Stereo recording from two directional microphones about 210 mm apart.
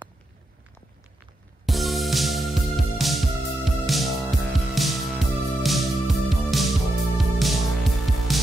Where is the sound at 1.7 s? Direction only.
Centre (ahead or behind).